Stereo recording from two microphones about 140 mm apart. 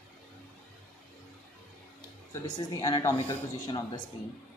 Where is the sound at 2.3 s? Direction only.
25° left (ahead or behind).